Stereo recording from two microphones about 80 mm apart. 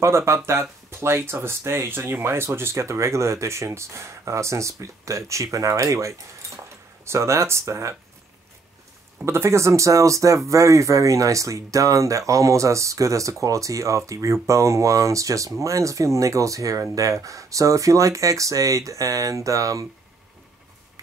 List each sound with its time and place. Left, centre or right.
0.0 s speech: right
9.2 s speech: right